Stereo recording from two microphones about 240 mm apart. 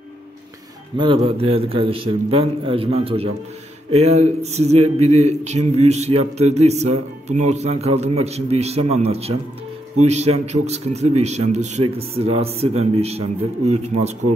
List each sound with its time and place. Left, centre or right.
0.9 s speech: right